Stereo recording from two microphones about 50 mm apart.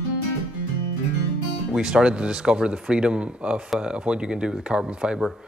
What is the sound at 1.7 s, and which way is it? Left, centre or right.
Speech, centre.